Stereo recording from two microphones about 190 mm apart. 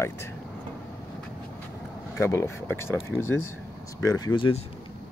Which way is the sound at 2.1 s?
15° left (ahead or behind).